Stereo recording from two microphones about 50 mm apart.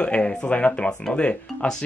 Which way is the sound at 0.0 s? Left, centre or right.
Centre.